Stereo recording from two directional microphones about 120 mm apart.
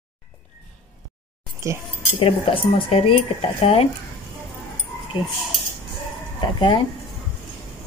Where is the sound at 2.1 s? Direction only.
45° left (ahead or behind).